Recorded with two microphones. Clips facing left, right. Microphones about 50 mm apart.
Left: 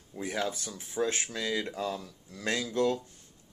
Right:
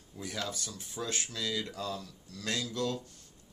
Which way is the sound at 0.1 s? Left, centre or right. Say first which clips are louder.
Left 5 dB; left.